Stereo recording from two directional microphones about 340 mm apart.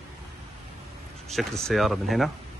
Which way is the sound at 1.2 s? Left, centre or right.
Centre.